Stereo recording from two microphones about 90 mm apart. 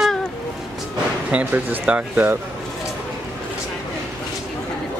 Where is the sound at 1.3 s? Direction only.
15° right (ahead or behind).